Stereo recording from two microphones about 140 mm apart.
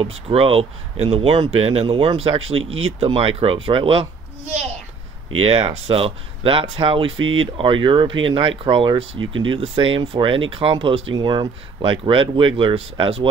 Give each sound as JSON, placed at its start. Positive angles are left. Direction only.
{"t": 0.0, "sound": "speech", "side_deg": -40}
{"t": 5.4, "sound": "speech", "side_deg": -45}